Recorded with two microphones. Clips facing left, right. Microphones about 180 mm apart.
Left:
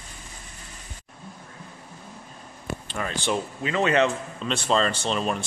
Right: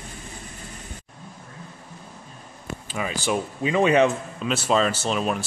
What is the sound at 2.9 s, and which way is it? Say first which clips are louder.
A man's voice: right 2 dB; 5° right (ahead or behind).